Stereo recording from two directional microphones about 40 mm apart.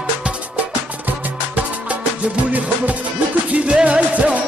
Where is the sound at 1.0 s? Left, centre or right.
Right.